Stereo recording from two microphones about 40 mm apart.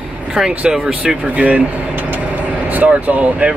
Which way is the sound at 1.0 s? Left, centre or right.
Right.